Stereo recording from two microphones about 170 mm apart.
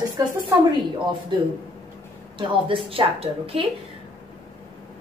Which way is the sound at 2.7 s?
30° right (ahead or behind).